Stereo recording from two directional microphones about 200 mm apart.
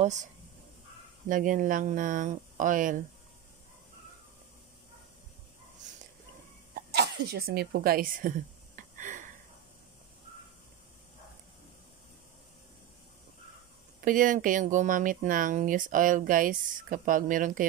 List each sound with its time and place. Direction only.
0.0 s speech: 35° right (ahead or behind)
1.3 s speech: 40° right (ahead or behind)
6.7 s sneeze: 50° right (ahead or behind)
14.0 s speech: 40° right (ahead or behind)